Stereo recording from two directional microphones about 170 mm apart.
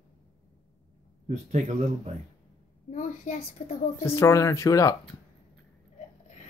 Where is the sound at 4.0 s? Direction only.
15° left (ahead or behind).